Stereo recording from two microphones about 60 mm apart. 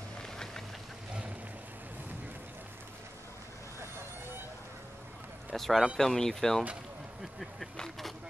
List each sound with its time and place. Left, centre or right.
5.5 s speech: centre
7.7 s speech: centre